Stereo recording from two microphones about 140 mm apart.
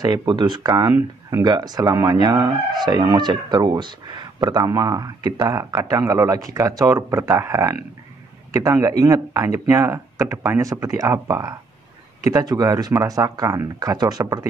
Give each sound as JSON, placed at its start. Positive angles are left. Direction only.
{"t": 0.0, "sound": "speech", "side_deg": -30}